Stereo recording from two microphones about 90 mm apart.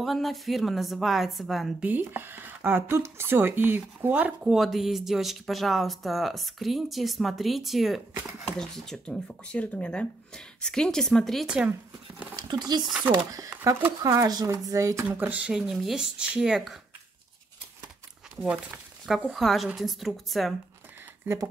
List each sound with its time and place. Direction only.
0.0 s speech: centre (ahead or behind)
1.8 s speech: 20° right (ahead or behind)
4.6 s speech: centre (ahead or behind)
11.4 s speech: 10° right (ahead or behind)
12.4 s speech: 50° right (ahead or behind)
13.1 s speech: 45° right (ahead or behind)
15.0 s speech: 15° right (ahead or behind)
18.3 s speech: 10° right (ahead or behind)